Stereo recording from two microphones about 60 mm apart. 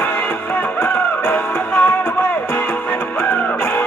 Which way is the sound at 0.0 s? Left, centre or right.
Left.